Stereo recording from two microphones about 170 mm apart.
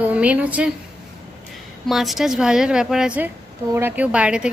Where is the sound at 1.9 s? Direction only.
Centre (ahead or behind).